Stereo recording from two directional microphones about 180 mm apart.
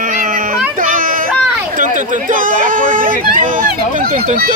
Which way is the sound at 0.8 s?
50° right (ahead or behind).